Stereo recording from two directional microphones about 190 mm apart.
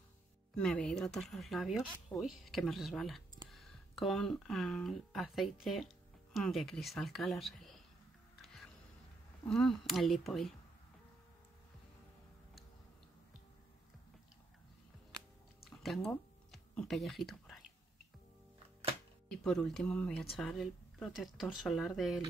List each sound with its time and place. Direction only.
0.6 s speech: 5° left (ahead or behind)
9.5 s speech: 5° left (ahead or behind)
15.6 s a sound: centre (ahead or behind)
19.2 s speech: 5° left (ahead or behind)